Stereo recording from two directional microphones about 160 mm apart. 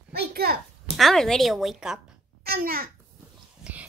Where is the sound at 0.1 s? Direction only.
75° right (ahead or behind).